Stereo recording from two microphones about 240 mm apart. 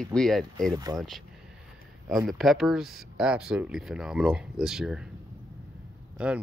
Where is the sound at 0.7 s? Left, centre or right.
Centre.